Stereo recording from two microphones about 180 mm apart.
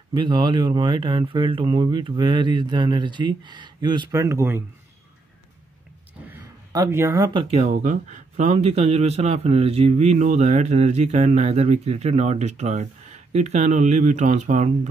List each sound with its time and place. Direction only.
0.1 s speech: 25° right (ahead or behind)
6.2 s a sound: 15° right (ahead or behind)
7.5 s speech: 40° right (ahead or behind)